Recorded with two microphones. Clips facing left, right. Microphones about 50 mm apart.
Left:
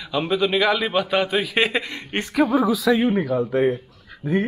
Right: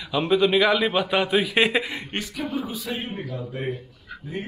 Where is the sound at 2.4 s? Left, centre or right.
Left.